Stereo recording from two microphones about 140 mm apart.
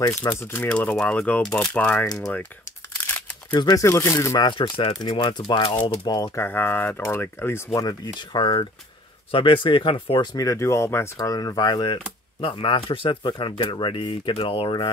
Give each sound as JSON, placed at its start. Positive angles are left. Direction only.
{"t": 0.1, "sound": "speech", "side_deg": 20}
{"t": 3.5, "sound": "speech", "side_deg": 25}
{"t": 10.3, "sound": "speech", "side_deg": 25}